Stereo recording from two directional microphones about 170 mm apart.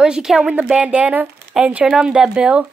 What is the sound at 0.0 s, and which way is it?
Speech, 5° right (ahead or behind).